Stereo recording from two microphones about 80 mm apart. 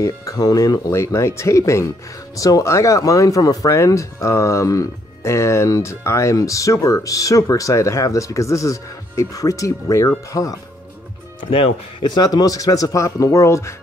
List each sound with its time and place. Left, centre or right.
0.0 s speech: left
0.9 s speech: left
12.1 s speech: left